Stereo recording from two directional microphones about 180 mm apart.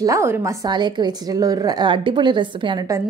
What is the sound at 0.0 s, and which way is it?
Speech, 15° right (ahead or behind).